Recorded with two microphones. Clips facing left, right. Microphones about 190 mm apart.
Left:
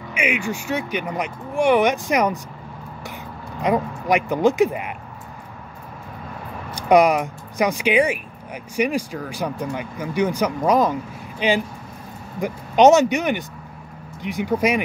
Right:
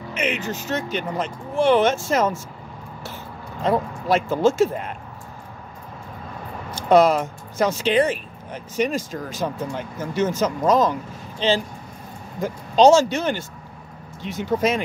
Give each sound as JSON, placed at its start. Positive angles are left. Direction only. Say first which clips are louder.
{"t": 0.1, "sound": "speech", "louder": "left 2 dB", "side_deg": 10}
{"t": 3.6, "sound": "speech", "louder": "left 1 dB", "side_deg": 15}
{"t": 6.7, "sound": "speech", "louder": "even", "side_deg": 15}